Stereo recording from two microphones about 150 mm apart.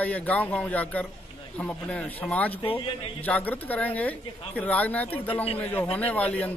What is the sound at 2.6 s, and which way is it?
Speech, 40° left (ahead or behind).